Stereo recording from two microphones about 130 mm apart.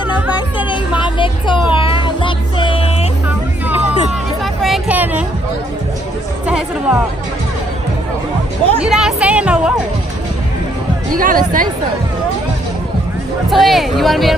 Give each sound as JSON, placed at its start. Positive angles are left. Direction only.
{"t": 0.7, "sound": "speech", "side_deg": 40}
{"t": 1.7, "sound": "music", "side_deg": 40}
{"t": 4.6, "sound": "a sound", "side_deg": 0}
{"t": 4.9, "sound": "a sound", "side_deg": -15}
{"t": 6.4, "sound": "speech", "side_deg": -5}
{"t": 8.8, "sound": "speech", "side_deg": -5}
{"t": 11.1, "sound": "speech", "side_deg": -90}
{"t": 13.5, "sound": "speech", "side_deg": 0}